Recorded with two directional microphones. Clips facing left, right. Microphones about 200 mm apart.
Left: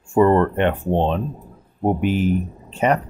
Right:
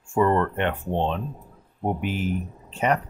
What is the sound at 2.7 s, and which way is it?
Speech, 25° left (ahead or behind).